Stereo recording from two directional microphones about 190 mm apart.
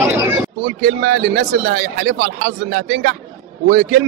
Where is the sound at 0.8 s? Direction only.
55° right (ahead or behind).